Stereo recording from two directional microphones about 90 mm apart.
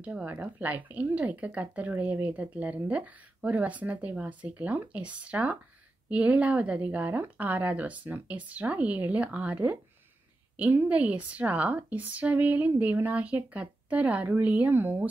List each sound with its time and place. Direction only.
0.0 s speech: 20° right (ahead or behind)